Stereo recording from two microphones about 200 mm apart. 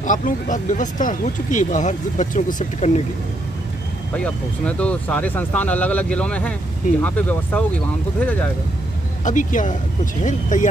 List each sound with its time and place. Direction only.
0.0 s speech: 40° left (ahead or behind)
4.1 s speech: 5° left (ahead or behind)
9.2 s speech: 40° left (ahead or behind)